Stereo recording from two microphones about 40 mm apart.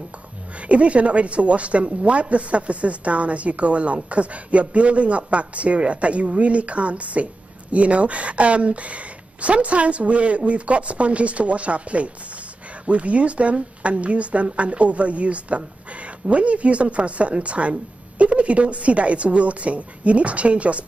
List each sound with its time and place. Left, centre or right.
0.7 s speech: right